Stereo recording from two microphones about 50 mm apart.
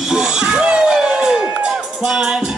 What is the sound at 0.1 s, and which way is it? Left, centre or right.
Music, centre.